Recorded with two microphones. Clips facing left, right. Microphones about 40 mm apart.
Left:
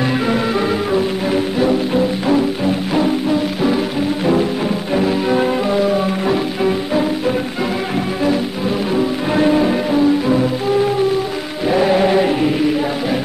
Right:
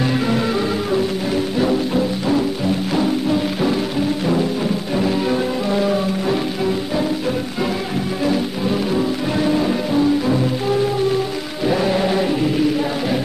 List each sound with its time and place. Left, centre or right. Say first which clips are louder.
0.3 s music: left 2 dB; left
4.9 s music: left 4 dB; left
5.7 s music: left 3 dB; centre
5.9 s music: left 3 dB; left
8.2 s music: left 1 dB; centre
9.4 s music: left 5 dB; left
9.9 s music: left 2 dB; centre
11.6 s music: left 4 dB; left